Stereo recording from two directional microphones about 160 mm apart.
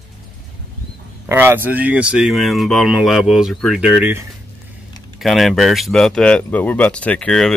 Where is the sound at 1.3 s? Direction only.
15° right (ahead or behind).